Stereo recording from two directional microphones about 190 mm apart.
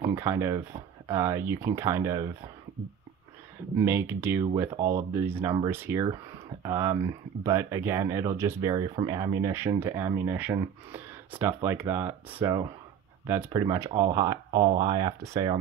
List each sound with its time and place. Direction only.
0.1 s speech: 15° right (ahead or behind)
3.7 s speech: 10° right (ahead or behind)